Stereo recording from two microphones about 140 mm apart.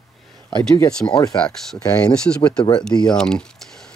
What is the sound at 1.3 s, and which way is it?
Speech, 5° left (ahead or behind).